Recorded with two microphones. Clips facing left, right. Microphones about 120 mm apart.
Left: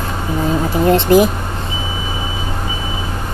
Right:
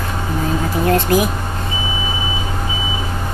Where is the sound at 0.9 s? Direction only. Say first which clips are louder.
Left 5 dB; 25° left (ahead or behind).